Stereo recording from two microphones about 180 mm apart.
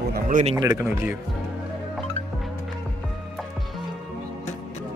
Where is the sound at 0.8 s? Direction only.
10° right (ahead or behind).